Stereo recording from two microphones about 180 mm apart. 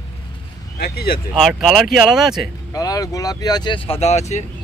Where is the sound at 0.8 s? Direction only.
60° left (ahead or behind).